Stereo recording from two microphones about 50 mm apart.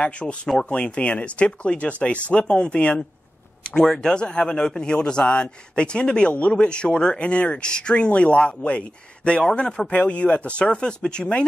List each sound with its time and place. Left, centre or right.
0.0 s speech: left